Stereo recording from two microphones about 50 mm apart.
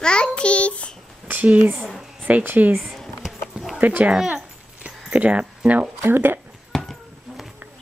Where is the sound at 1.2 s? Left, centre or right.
Right.